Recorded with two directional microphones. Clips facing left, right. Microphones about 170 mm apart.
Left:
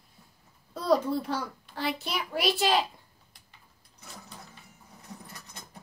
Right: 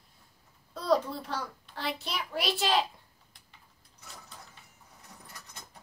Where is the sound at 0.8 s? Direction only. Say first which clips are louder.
Left 3 dB; 5° left (ahead or behind).